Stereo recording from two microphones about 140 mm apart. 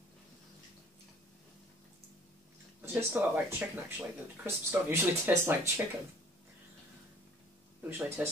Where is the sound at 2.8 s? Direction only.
15° right (ahead or behind).